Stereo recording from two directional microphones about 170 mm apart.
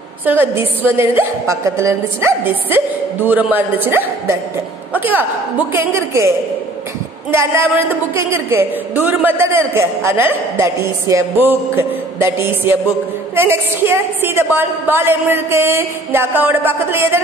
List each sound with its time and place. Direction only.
0.2 s a woman's voice: 10° right (ahead or behind)